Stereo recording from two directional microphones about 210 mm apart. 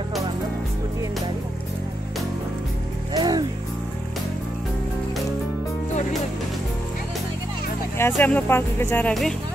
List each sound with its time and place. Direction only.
3.1 s music: 20° right (ahead or behind)
8.1 s speech: 5° left (ahead or behind)